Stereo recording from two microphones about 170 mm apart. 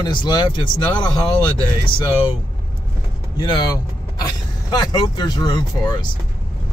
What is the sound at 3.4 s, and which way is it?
Speech, 25° left (ahead or behind).